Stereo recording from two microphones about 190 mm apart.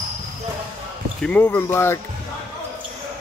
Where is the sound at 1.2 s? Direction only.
10° left (ahead or behind).